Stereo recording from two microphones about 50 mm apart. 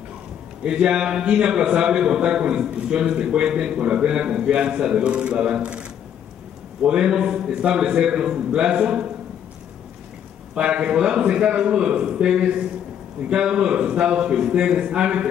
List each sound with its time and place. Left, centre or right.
0.7 s a man's voice: centre
10.5 s a man's voice: centre